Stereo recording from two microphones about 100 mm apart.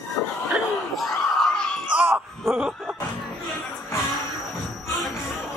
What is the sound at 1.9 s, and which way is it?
Wail, 20° right (ahead or behind).